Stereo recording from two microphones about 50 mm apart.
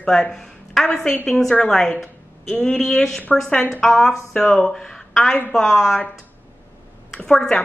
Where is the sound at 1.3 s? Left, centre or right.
Centre.